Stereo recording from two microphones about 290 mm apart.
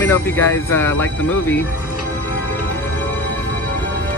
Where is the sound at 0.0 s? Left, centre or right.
Centre.